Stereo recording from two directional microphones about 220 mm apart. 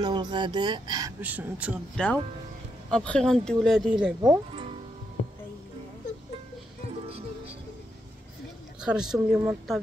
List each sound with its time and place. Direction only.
0.0 s speech: 20° right (ahead or behind)
1.2 s speech: 5° right (ahead or behind)
2.0 s speech: 5° left (ahead or behind)
4.2 s speech: 15° right (ahead or behind)
8.8 s speech: 5° right (ahead or behind)